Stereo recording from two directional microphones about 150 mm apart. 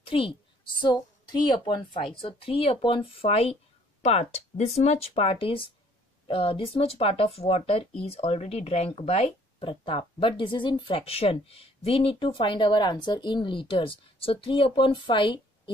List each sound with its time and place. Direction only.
0.0 s a woman's voice: 35° left (ahead or behind)